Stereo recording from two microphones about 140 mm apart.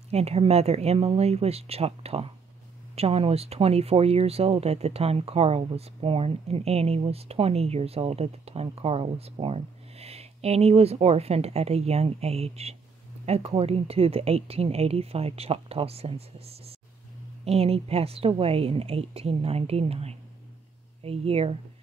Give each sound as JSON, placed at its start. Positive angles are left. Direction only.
{"t": 0.1, "sound": "speech", "side_deg": -50}